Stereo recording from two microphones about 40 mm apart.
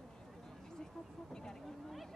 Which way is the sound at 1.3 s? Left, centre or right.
Centre.